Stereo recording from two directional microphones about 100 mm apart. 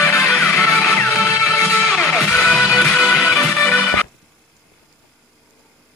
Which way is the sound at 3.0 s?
10° left (ahead or behind).